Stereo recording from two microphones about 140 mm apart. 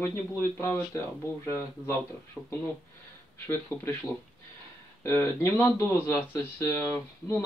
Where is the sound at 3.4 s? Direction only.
15° left (ahead or behind).